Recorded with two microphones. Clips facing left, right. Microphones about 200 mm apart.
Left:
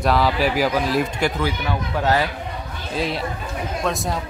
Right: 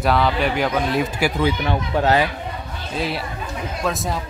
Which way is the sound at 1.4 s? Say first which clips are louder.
Right 3 dB; 20° right (ahead or behind).